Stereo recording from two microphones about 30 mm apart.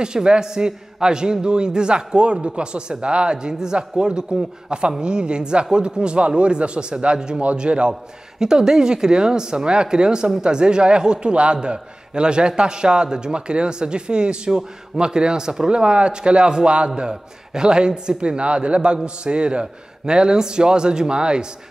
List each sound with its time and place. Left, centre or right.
0.0 s a man's voice: right
8.4 s a man's voice: right
15.7 s a man's voice: right